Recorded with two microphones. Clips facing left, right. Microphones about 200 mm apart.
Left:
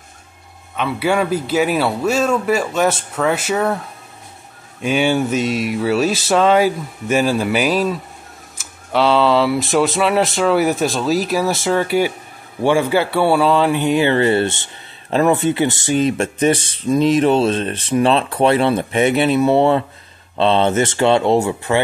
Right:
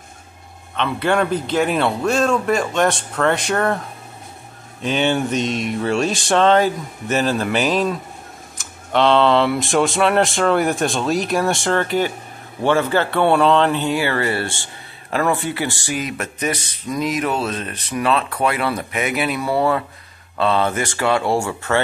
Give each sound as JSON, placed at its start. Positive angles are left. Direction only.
{"t": 0.7, "sound": "speech", "side_deg": 5}
{"t": 4.8, "sound": "speech", "side_deg": 10}